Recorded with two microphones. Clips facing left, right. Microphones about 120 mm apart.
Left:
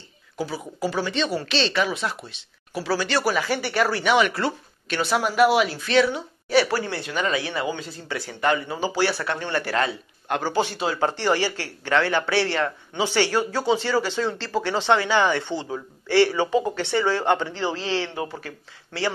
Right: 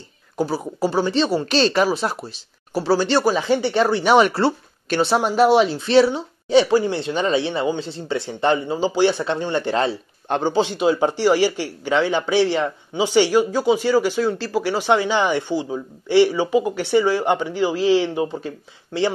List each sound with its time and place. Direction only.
0.4 s speech: 35° right (ahead or behind)
1.6 s speech: 40° right (ahead or behind)
10.5 s speech: 20° right (ahead or behind)